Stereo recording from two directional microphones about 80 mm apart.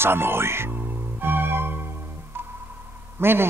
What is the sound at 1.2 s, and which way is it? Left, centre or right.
Music, right.